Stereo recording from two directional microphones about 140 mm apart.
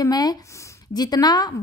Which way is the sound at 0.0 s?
30° left (ahead or behind).